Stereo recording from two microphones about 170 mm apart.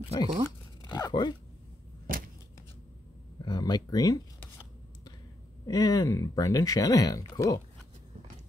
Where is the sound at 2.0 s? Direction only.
55° right (ahead or behind).